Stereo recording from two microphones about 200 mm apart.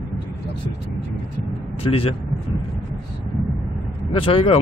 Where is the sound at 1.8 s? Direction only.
30° left (ahead or behind).